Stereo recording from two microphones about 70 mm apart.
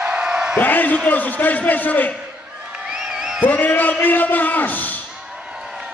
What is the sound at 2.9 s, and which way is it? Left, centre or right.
Music, centre.